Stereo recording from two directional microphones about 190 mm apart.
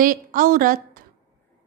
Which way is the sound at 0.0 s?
45° right (ahead or behind).